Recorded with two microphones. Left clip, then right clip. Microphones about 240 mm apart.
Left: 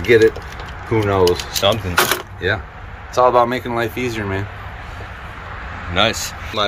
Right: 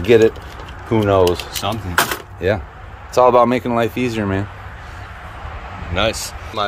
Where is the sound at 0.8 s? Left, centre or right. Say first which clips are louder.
Right 3 dB; right.